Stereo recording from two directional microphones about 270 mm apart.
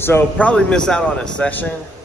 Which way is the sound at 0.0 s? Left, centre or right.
Centre.